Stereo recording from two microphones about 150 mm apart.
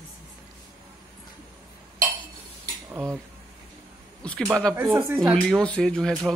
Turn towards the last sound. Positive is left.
turn(degrees=5)  # may be behind; listen again after turning